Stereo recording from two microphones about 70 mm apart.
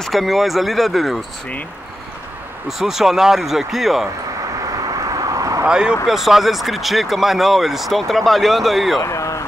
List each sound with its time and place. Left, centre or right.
0.0 s speech: centre
2.8 s speech: centre
4.6 s vehicle: right
5.7 s speech: centre
9.0 s a sound: left